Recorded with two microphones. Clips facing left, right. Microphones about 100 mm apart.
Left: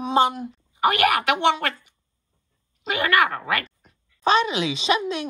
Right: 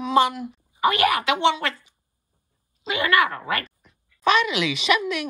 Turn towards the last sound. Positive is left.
turn(degrees=25)  # may be behind; listen again after turning